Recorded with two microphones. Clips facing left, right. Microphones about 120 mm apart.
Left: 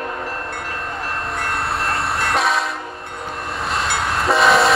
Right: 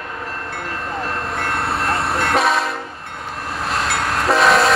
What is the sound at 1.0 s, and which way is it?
Train, centre (ahead or behind).